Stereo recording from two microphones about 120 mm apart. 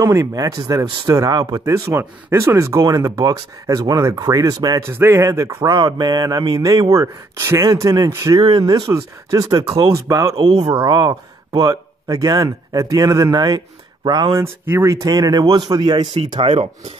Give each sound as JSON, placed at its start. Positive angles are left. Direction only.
{"t": 0.0, "sound": "speech", "side_deg": -25}
{"t": 5.7, "sound": "speech", "side_deg": -35}
{"t": 8.4, "sound": "speech", "side_deg": -40}
{"t": 14.3, "sound": "speech", "side_deg": -20}
{"t": 16.1, "sound": "speech", "side_deg": -60}